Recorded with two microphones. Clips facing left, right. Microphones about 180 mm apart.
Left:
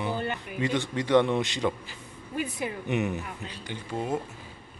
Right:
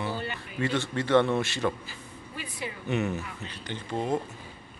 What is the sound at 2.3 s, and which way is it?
Speech, 50° left (ahead or behind).